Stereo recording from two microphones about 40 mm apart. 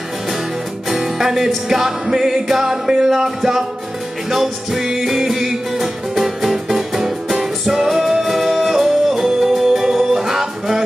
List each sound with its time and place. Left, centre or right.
0.8 s music: centre